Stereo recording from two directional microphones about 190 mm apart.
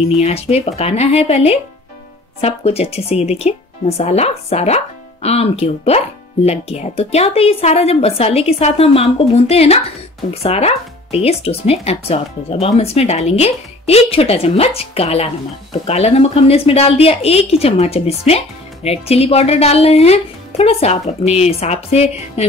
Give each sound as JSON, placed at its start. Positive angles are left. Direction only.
{"t": 0.2, "sound": "speech", "side_deg": 30}